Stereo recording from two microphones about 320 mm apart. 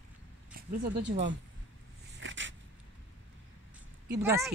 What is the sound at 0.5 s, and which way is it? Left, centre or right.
Speech, right.